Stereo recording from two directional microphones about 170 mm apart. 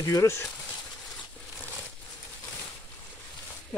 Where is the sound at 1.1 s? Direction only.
5° right (ahead or behind).